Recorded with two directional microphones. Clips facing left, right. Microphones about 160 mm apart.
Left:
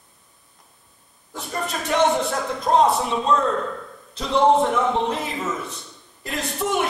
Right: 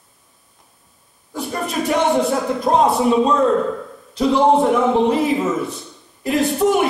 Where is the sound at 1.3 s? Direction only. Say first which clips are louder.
Right 5 dB; centre (ahead or behind).